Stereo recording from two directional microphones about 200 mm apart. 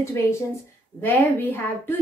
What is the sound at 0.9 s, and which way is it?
A woman's voice, 10° left (ahead or behind).